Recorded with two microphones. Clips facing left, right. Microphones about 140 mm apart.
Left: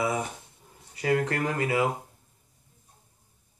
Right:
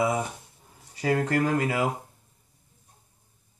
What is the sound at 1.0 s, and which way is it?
Speech, 25° right (ahead or behind).